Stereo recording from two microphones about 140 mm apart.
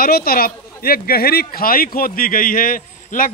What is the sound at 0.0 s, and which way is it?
A man's voice, 90° left.